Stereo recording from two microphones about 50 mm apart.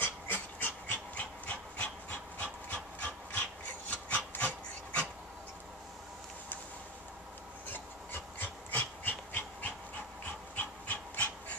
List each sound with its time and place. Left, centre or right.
0.0 s pant: left
4.3 s dog: left
7.6 s dog: left